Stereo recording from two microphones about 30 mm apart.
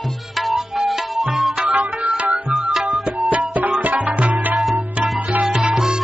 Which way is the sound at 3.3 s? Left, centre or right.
Right.